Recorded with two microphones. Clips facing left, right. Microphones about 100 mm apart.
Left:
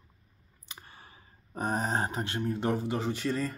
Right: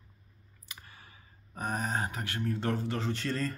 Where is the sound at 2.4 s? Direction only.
15° left (ahead or behind).